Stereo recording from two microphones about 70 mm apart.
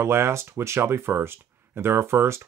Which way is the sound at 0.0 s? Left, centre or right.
Right.